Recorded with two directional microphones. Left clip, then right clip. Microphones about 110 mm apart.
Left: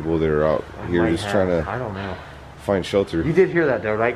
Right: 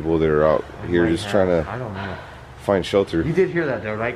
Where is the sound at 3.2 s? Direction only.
20° left (ahead or behind).